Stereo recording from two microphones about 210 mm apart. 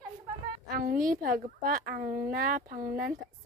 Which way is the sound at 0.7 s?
40° right (ahead or behind).